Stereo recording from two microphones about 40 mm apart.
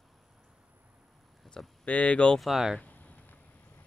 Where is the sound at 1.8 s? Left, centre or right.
Left.